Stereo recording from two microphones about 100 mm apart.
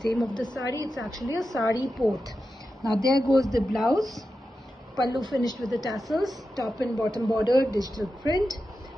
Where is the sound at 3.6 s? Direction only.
Centre (ahead or behind).